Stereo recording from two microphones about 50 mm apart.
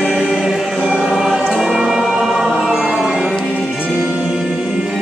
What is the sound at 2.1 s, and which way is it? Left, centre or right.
Choir, centre.